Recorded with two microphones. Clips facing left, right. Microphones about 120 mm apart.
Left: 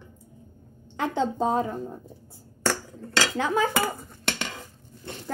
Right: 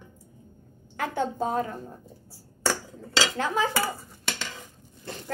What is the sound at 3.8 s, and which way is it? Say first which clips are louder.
Dishes: left 2 dB; 55° left (ahead or behind).